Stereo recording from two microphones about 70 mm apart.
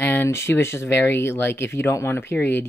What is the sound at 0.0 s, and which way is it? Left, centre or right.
Speech, left.